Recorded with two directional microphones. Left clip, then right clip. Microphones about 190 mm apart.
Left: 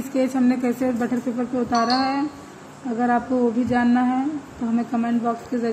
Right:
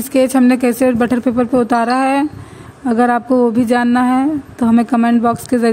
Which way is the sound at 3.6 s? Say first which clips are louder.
Right 7 dB; 65° right (ahead or behind).